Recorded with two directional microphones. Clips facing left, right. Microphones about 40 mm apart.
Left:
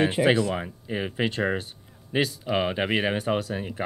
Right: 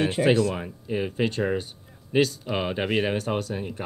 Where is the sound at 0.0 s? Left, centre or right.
Centre.